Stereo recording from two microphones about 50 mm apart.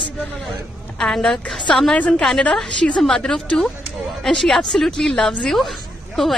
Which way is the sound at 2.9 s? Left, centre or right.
Centre.